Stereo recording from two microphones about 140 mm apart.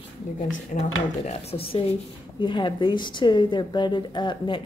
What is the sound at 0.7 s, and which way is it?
Speech, 65° left (ahead or behind).